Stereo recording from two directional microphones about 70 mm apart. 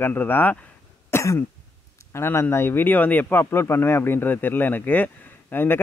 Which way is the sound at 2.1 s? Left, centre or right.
Left.